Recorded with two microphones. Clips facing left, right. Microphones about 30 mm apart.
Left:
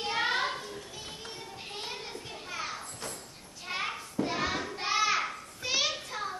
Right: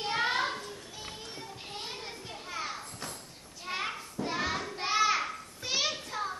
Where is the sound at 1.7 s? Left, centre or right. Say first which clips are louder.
Left 2 dB; centre.